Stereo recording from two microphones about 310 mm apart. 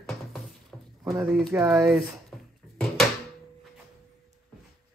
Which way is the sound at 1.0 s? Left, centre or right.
Centre.